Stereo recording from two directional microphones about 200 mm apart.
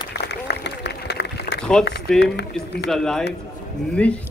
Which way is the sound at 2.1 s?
5° left (ahead or behind).